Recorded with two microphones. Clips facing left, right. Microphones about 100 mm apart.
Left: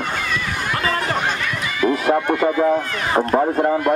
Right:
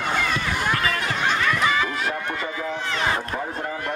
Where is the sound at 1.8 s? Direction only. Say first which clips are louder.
Left 10 dB; 55° left (ahead or behind).